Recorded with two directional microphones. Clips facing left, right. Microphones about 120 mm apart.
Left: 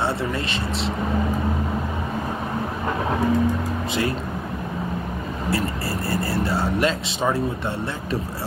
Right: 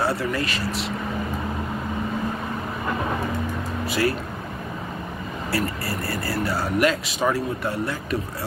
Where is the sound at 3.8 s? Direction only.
25° left (ahead or behind).